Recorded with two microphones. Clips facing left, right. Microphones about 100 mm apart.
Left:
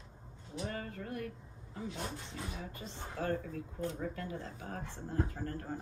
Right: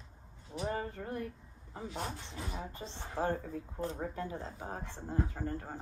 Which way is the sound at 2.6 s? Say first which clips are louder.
Right 2 dB; 30° right (ahead or behind).